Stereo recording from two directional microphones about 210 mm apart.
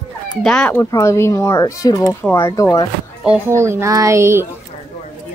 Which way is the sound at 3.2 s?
10° right (ahead or behind).